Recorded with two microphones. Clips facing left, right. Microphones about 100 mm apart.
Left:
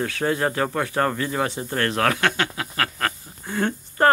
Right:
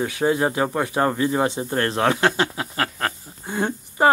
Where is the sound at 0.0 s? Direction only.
15° right (ahead or behind).